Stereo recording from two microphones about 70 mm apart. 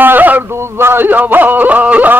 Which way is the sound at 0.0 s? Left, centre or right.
Right.